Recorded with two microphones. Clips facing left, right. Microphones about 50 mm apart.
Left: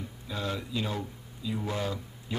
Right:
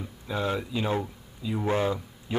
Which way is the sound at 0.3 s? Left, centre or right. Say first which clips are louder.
Right 5 dB; right.